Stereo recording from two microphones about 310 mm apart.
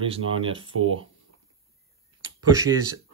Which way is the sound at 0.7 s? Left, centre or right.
Right.